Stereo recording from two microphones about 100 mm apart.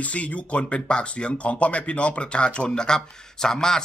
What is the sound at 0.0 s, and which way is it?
Speech, 15° left (ahead or behind).